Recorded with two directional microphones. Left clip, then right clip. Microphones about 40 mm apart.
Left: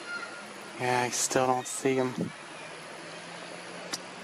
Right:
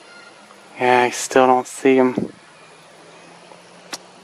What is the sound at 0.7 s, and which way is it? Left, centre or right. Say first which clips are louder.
Speech: right 13 dB; right.